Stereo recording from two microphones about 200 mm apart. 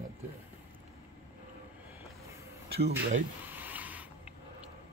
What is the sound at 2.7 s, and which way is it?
Speech, 50° right (ahead or behind).